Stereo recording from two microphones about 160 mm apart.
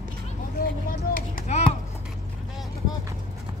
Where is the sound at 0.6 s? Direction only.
60° left (ahead or behind).